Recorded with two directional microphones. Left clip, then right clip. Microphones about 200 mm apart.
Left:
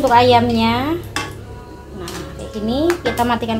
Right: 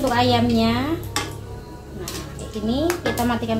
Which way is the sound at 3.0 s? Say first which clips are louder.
Left 5 dB; 50° left (ahead or behind).